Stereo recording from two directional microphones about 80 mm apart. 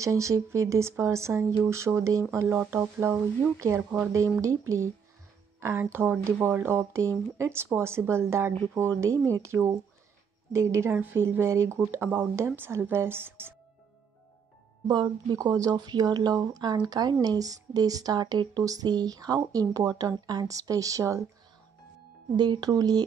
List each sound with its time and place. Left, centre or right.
0.0 s speech: right
14.9 s speech: right
18.6 s speech: right
22.4 s speech: right
22.7 s speech: right